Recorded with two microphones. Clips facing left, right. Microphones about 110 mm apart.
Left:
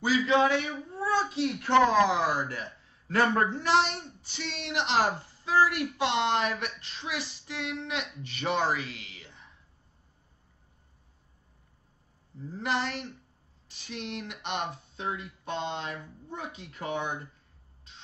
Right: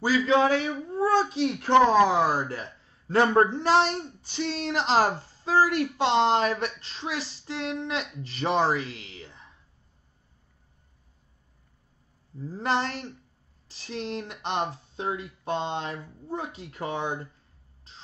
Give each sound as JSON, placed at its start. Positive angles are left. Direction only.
{"t": 0.0, "sound": "speech", "side_deg": -35}
{"t": 12.4, "sound": "speech", "side_deg": -35}